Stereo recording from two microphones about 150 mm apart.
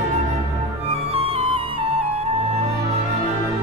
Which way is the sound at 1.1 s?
40° right (ahead or behind).